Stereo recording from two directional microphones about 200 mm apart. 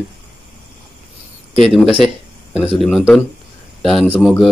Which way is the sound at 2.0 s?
Centre (ahead or behind).